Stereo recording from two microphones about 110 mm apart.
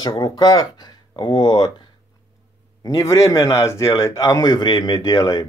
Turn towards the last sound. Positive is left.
turn(degrees=40)  # may be behind; listen again after turning